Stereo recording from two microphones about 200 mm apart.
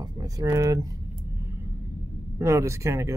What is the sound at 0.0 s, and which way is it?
Speech, 20° right (ahead or behind).